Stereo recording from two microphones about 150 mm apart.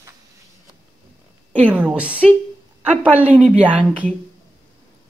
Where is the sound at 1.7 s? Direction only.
10° right (ahead or behind).